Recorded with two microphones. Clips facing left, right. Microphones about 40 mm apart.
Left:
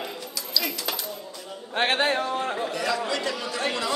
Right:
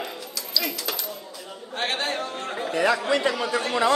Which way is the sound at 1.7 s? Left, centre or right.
Left.